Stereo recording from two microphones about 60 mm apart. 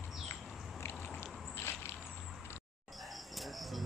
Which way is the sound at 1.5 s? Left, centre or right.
Left.